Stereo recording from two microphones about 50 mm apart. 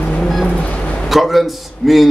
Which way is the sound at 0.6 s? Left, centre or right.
Left.